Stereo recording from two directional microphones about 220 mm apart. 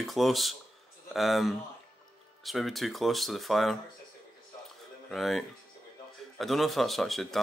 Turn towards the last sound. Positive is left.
turn(degrees=0)  # may be behind; listen again after turning